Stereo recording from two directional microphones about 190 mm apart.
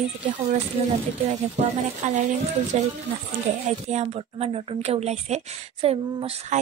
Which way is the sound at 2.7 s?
40° right (ahead or behind).